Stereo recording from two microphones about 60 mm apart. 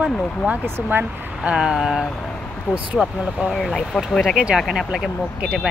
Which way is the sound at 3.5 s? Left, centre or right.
Centre.